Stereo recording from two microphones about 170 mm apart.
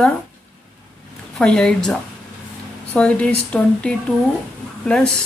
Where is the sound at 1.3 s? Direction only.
5° left (ahead or behind).